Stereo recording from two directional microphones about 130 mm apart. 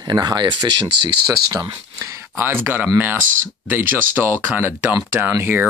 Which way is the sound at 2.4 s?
15° right (ahead or behind).